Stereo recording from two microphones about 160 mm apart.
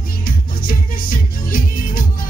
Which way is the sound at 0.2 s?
60° left (ahead or behind).